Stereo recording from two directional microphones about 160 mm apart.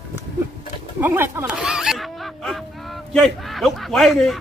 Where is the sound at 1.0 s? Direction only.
15° right (ahead or behind).